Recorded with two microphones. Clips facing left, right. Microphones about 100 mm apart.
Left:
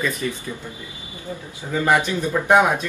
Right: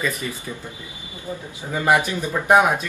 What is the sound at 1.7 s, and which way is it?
Speech, 15° right (ahead or behind).